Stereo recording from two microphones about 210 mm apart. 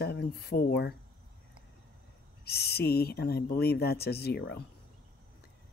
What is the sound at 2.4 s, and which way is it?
Speech, 50° left (ahead or behind).